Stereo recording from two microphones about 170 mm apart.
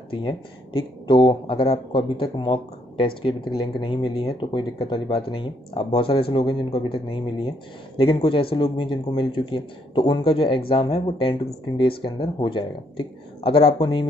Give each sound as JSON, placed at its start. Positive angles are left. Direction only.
{"t": 0.1, "sound": "speech", "side_deg": 30}